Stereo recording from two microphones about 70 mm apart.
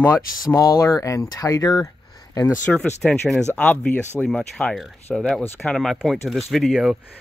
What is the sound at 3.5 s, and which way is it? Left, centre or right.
Speech, centre.